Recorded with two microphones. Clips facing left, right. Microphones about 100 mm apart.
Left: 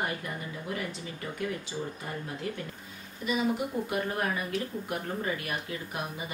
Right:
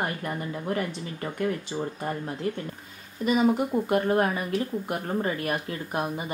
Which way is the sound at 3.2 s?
45° right (ahead or behind).